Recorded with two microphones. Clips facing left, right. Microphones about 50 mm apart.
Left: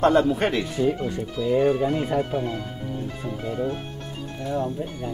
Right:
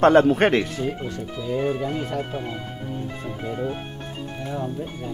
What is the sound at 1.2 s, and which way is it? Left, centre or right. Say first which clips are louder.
Speech: left 4 dB; centre.